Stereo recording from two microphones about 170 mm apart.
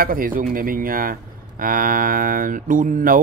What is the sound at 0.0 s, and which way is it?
Speech, 55° right (ahead or behind).